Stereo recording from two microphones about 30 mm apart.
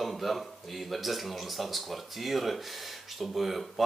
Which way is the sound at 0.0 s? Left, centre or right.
Centre.